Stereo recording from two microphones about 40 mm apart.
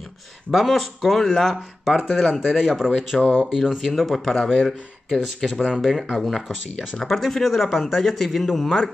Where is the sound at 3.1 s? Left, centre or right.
Centre.